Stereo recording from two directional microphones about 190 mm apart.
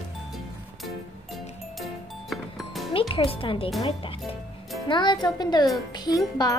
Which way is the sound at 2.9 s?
30° left (ahead or behind).